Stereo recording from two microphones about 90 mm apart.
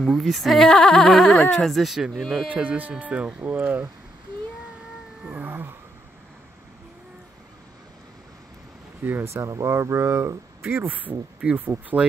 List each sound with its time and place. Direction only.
0.0 s speech: centre (ahead or behind)
2.4 s speech: 15° right (ahead or behind)
5.2 s a sound: 15° right (ahead or behind)
9.0 s speech: 25° right (ahead or behind)